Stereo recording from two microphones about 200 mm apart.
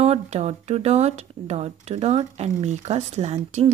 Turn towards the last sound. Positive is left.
turn(degrees=-30)  # may be behind; listen again after turning